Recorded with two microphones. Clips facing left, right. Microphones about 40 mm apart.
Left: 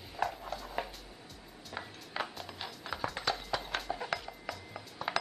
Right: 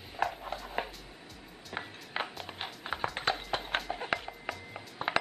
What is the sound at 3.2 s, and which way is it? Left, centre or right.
Music, right.